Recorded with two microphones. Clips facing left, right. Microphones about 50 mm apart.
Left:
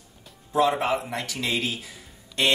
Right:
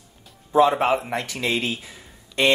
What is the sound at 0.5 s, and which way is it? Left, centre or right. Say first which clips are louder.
Speech: right 5 dB; centre.